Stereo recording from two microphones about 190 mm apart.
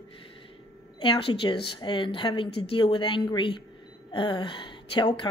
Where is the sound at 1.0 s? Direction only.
25° left (ahead or behind).